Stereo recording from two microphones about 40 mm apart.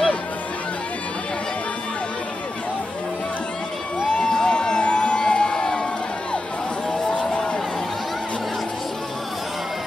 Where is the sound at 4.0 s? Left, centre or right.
Left.